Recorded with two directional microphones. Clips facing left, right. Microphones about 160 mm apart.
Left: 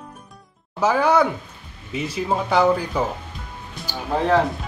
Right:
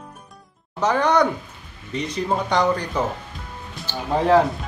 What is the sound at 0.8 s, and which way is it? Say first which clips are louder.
Speech: left 1 dB; 5° left (ahead or behind).